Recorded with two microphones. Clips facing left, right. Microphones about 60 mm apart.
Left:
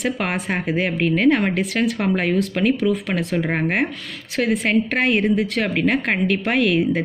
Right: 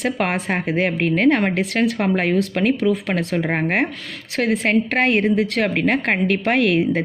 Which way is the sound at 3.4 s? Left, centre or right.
Right.